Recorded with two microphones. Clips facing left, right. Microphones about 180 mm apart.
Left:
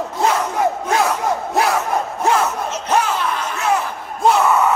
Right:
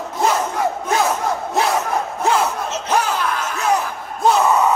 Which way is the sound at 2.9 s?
Centre (ahead or behind).